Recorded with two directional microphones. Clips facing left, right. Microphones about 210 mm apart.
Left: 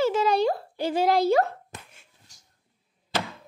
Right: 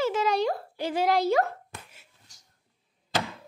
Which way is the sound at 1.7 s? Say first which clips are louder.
Left 1 dB; 20° left (ahead or behind).